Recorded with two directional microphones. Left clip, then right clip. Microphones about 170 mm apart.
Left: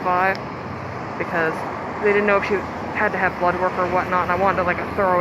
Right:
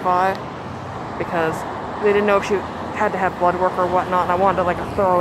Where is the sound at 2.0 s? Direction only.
30° right (ahead or behind).